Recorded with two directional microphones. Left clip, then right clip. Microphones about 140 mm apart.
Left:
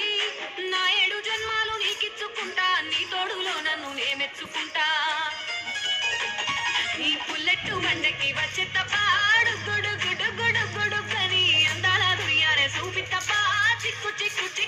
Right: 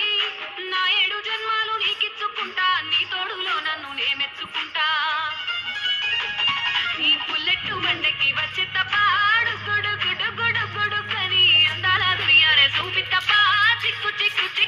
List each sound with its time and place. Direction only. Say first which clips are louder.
0.0 s music: right 4 dB; 45° left (ahead or behind); by 14.7 s 25° left (ahead or behind)